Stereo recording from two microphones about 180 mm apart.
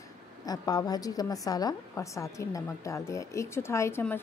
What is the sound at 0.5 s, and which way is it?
A woman's voice, 20° left (ahead or behind).